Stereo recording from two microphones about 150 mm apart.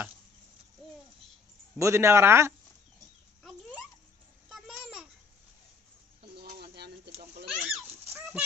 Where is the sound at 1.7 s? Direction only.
20° right (ahead or behind).